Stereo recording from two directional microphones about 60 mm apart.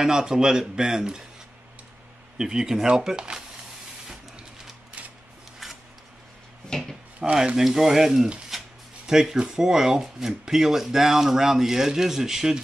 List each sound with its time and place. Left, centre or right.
0.0 s speech: centre
2.3 s speech: centre
4.1 s printer: centre
5.0 s a sound: right
5.6 s a sound: centre
6.7 s speech: centre
7.3 s speech: centre